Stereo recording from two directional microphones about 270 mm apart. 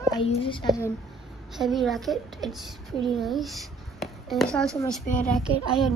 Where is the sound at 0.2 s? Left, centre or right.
Centre.